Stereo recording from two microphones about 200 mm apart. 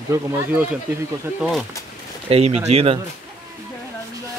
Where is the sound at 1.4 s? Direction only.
Centre (ahead or behind).